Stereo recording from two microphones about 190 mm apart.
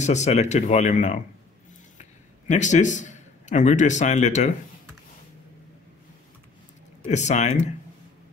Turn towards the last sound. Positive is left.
turn(degrees=35)  # may be behind; listen again after turning